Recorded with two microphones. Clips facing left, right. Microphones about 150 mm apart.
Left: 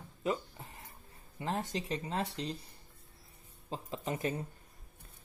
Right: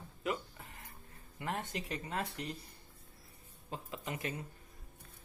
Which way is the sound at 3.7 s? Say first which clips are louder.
Left 4 dB; 30° left (ahead or behind).